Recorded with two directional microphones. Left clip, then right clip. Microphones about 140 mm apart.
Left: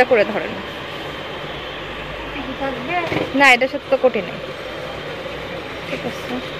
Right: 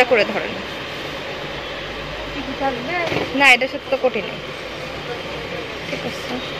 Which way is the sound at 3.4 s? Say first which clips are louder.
Left 1 dB; 25° left (ahead or behind).